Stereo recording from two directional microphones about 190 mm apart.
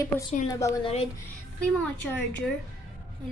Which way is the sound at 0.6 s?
15° left (ahead or behind).